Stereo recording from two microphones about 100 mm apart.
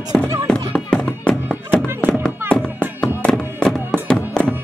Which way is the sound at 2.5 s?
10° left (ahead or behind).